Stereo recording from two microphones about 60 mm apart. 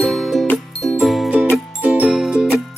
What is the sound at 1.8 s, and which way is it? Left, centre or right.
Music, right.